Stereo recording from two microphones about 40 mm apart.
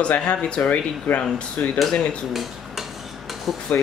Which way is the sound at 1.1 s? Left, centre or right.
Left.